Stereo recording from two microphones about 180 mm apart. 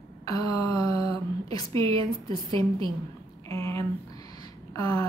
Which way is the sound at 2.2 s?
30° right (ahead or behind).